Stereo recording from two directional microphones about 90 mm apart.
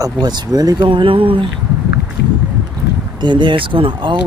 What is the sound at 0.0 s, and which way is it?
Speech, 55° right (ahead or behind).